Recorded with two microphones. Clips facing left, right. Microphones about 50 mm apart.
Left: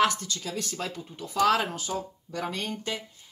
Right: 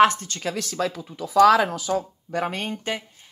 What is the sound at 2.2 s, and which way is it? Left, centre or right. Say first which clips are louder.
Speech: right 6 dB; right.